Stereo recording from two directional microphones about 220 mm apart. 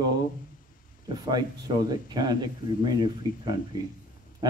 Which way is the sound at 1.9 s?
20° right (ahead or behind).